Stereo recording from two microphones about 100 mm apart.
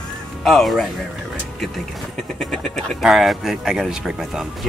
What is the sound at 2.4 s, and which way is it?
Speech, 5° left (ahead or behind).